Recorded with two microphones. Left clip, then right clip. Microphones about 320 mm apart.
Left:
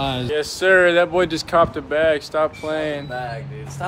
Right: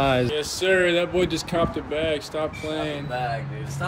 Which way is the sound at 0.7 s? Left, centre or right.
Centre.